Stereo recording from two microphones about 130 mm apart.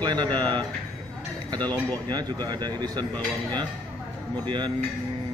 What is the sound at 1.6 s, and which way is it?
Speech, 30° right (ahead or behind).